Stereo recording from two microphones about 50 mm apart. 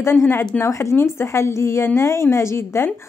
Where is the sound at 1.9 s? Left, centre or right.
Left.